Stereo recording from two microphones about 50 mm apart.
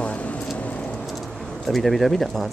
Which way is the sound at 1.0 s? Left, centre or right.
Centre.